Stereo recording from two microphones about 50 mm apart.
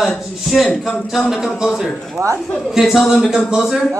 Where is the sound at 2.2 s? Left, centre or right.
Right.